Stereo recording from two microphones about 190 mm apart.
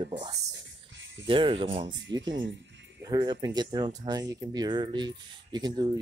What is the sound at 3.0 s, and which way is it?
Speech, 20° right (ahead or behind).